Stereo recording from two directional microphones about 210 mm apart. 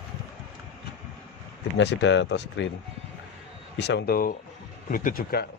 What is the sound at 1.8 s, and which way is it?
Speech, 60° left (ahead or behind).